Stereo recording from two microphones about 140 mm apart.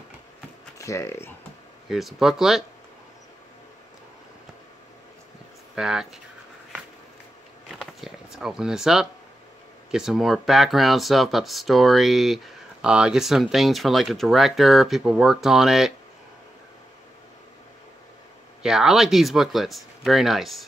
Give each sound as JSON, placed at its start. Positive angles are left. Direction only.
{"t": 0.7, "sound": "speech", "side_deg": 20}
{"t": 1.9, "sound": "speech", "side_deg": 0}
{"t": 5.8, "sound": "speech", "side_deg": -5}
{"t": 7.7, "sound": "a sound", "side_deg": 0}
{"t": 9.8, "sound": "speech", "side_deg": -5}
{"t": 18.6, "sound": "speech", "side_deg": -5}